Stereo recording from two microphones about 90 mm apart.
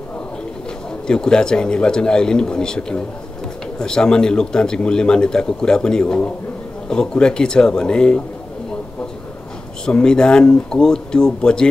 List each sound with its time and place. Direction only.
1.0 s a man's voice: 10° left (ahead or behind)
9.8 s a man's voice: 10° left (ahead or behind)